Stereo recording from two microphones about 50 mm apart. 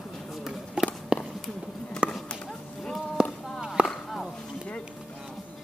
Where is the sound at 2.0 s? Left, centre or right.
Right.